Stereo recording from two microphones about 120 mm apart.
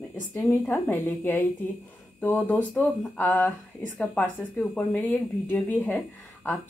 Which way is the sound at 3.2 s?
15° left (ahead or behind).